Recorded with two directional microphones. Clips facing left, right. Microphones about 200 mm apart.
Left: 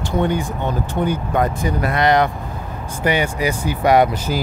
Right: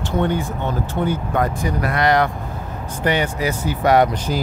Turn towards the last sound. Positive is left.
turn(degrees=10)  # may be behind; listen again after turning